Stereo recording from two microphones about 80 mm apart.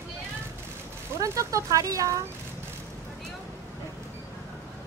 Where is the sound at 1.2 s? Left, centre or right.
Right.